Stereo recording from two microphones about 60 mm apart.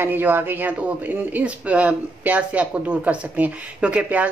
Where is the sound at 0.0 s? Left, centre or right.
Right.